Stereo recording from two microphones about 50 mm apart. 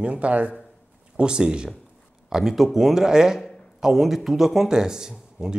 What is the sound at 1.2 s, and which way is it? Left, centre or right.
Speech, centre.